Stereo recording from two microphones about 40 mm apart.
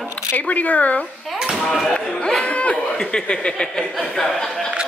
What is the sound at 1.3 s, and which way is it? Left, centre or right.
Speech, centre.